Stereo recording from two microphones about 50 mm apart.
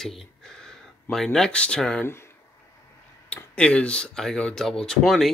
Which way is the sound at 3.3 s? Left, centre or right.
Left.